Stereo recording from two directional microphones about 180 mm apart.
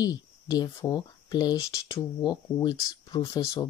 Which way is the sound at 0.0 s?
20° left (ahead or behind).